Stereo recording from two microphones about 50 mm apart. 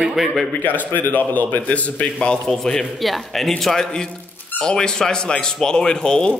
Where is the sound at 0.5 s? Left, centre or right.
Left.